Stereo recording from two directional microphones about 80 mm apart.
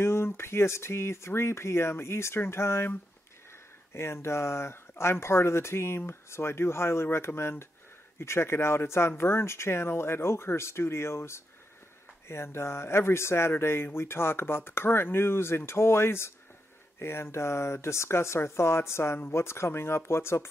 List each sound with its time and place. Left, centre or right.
0.0 s speech: left